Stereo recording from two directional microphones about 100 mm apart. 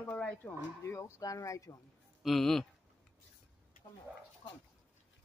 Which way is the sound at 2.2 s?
5° left (ahead or behind).